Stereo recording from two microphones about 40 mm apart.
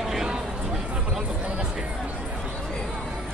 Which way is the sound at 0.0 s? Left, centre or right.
Centre.